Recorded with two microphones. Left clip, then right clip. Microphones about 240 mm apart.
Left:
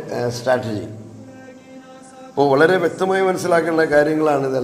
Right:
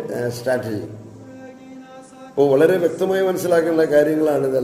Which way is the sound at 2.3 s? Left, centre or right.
Left.